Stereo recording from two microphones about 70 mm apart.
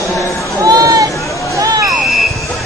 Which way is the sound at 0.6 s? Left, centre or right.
Right.